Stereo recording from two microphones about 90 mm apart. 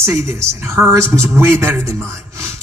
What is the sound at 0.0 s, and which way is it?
Speech, 30° right (ahead or behind).